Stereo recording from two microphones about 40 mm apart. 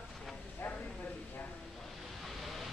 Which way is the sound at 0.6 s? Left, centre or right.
Left.